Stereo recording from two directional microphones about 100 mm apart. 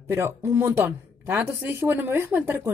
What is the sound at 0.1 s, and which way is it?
A woman's voice, 30° right (ahead or behind).